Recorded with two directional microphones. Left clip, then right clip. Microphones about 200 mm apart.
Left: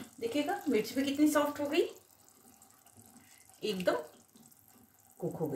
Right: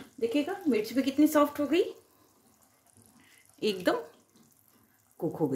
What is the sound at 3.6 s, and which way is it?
Speech, 55° right (ahead or behind).